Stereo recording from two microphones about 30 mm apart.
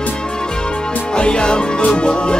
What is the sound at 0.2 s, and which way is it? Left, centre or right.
Music, left.